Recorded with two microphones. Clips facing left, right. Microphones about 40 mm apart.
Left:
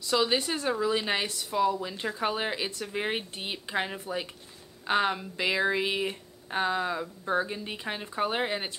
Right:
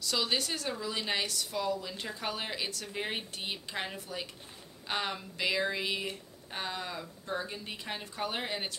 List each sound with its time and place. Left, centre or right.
0.0 s a woman's voice: centre